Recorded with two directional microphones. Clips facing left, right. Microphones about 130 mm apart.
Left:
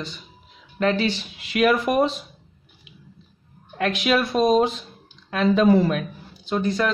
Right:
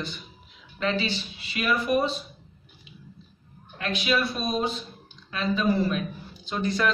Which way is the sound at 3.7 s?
80° left.